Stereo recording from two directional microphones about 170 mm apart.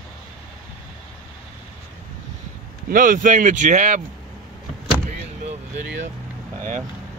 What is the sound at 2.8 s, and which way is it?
Speech, 50° right (ahead or behind).